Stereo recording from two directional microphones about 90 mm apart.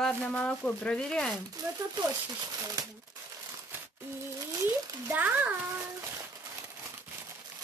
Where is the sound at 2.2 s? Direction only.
40° right (ahead or behind).